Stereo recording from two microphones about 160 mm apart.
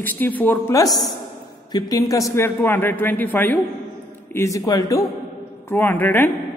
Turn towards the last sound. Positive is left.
turn(degrees=10)  # may be behind; listen again after turning